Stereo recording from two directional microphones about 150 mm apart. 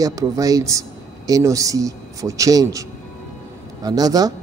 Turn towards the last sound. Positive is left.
turn(degrees=-25)  # may be behind; listen again after turning